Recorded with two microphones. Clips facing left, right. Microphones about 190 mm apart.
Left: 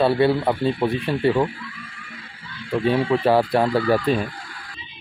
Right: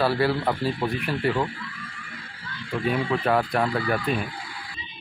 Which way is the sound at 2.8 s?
30° left (ahead or behind).